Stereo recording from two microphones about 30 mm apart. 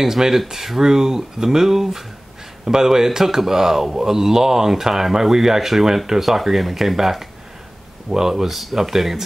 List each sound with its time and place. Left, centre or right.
0.0 s speech: centre
8.5 s speech: centre